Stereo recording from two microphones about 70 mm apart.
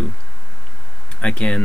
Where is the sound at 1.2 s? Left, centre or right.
Centre.